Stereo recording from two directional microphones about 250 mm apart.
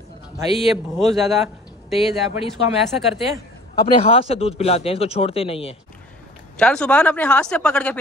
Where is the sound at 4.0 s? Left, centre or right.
Left.